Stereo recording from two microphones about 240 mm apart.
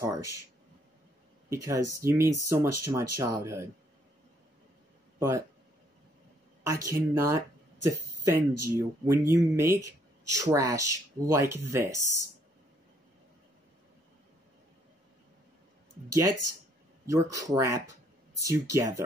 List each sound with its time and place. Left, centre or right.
0.0 s speech: centre
1.5 s speech: centre
6.6 s speech: centre
17.0 s speech: centre